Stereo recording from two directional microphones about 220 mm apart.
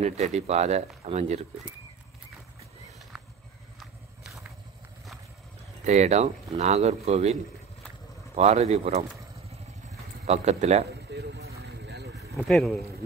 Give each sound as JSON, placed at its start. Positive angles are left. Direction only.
{"t": 0.0, "sound": "speech", "side_deg": -30}
{"t": 5.9, "sound": "speech", "side_deg": -30}
{"t": 8.4, "sound": "speech", "side_deg": -30}
{"t": 10.2, "sound": "speech", "side_deg": -30}
{"t": 11.1, "sound": "vehicle", "side_deg": -50}
{"t": 11.6, "sound": "boat", "side_deg": -50}
{"t": 12.4, "sound": "speech", "side_deg": 0}